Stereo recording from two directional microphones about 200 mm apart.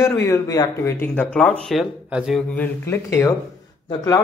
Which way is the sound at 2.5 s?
10° left (ahead or behind).